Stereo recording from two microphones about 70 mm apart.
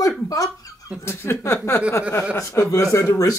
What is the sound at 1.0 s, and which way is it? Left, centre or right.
Speech, left.